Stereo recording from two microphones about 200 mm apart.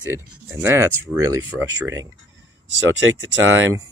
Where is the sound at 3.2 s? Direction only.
75° right (ahead or behind).